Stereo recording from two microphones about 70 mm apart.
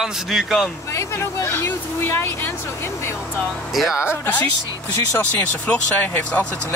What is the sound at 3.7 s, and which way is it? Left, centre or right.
Speech, centre.